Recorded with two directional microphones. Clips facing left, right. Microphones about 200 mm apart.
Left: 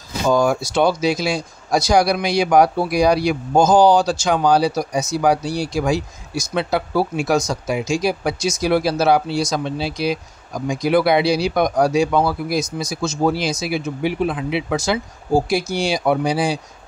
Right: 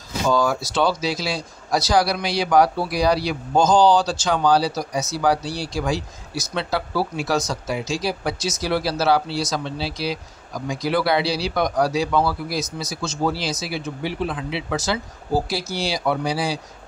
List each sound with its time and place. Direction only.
0.3 s speech: 15° left (ahead or behind)
16.0 s speech: 20° left (ahead or behind)